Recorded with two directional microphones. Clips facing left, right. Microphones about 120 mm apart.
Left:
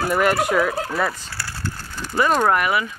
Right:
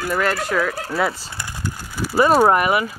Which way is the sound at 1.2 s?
20° right (ahead or behind).